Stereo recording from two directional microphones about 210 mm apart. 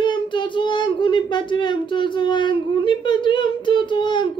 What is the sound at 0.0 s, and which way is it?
Speech, 20° left (ahead or behind).